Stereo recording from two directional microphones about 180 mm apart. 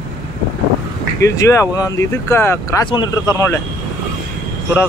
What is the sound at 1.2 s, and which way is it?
Speech, 15° left (ahead or behind).